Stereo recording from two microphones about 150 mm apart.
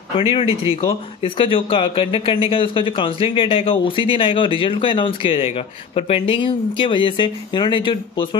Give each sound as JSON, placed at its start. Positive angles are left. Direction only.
{"t": 0.3, "sound": "speech", "side_deg": 40}